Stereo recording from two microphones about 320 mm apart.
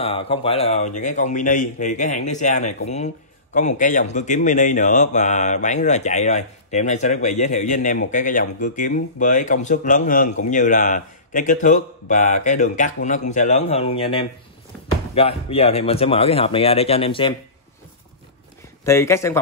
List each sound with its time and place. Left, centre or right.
0.0 s speech: centre
18.9 s speech: centre